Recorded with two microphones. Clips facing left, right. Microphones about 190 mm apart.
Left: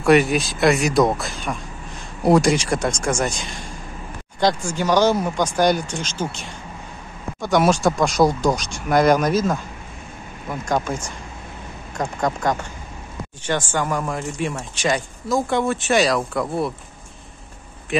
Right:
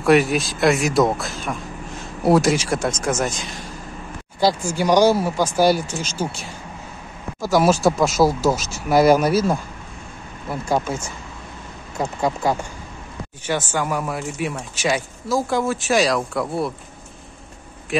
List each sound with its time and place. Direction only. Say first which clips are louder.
0.0 s speech: even; centre (ahead or behind)
4.4 s speech: right 1 dB; 5° right (ahead or behind)
12.0 s speech: right 1 dB; 5° right (ahead or behind)
13.7 s speech: even; 10° right (ahead or behind)